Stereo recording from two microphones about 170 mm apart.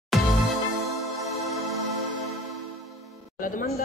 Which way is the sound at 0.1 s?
Centre (ahead or behind).